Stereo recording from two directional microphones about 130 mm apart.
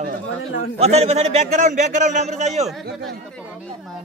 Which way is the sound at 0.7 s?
55° right (ahead or behind).